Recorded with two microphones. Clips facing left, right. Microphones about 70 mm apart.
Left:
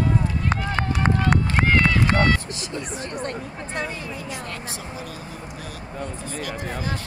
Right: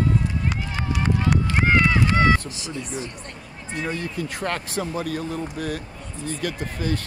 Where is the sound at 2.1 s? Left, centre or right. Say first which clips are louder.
Right 3 dB; centre.